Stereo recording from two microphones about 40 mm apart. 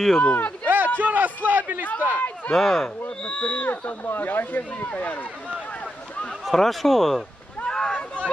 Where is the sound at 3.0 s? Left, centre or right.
Left.